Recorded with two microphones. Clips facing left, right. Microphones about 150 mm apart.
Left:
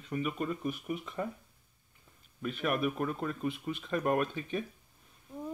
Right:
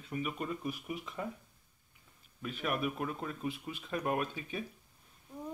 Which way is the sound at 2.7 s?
50° left (ahead or behind).